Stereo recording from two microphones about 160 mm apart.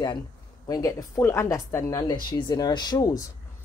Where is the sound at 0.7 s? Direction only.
25° left (ahead or behind).